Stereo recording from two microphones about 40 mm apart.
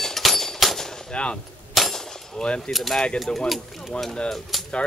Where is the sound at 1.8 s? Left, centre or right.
Centre.